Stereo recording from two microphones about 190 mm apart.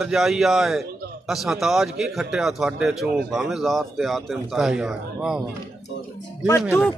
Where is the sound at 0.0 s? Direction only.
Centre (ahead or behind).